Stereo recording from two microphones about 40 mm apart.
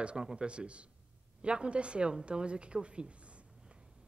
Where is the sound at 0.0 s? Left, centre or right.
Right.